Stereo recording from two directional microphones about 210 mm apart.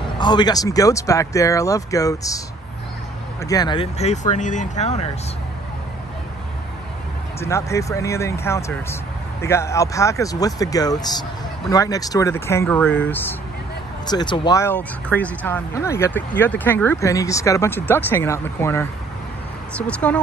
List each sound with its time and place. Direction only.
0.2 s speech: 20° left (ahead or behind)
3.4 s speech: 20° left (ahead or behind)
7.3 s speech: 15° left (ahead or behind)
14.0 s speech: 20° left (ahead or behind)